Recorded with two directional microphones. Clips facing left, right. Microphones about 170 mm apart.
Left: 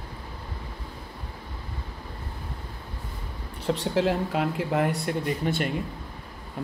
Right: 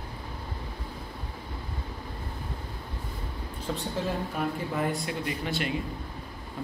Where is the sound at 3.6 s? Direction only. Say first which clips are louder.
Left 7 dB; 85° left; by 5.2 s 65° left (ahead or behind).